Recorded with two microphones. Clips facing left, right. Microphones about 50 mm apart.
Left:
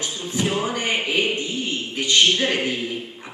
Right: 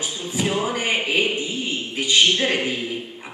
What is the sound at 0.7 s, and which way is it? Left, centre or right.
Speech, centre.